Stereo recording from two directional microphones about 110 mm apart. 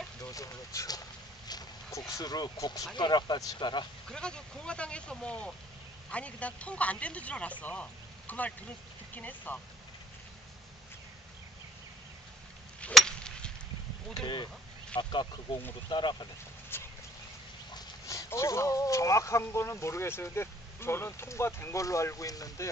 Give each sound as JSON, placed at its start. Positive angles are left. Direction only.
{"t": 0.2, "sound": "speech", "side_deg": 30}
{"t": 4.1, "sound": "speech", "side_deg": 10}
{"t": 12.9, "sound": "a sound", "side_deg": 5}
{"t": 14.2, "sound": "speech", "side_deg": 45}
{"t": 16.7, "sound": "clip-clop", "side_deg": 20}
{"t": 17.7, "sound": "speech", "side_deg": 30}